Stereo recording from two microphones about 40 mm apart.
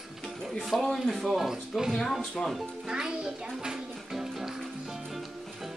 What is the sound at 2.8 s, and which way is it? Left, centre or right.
Music, centre.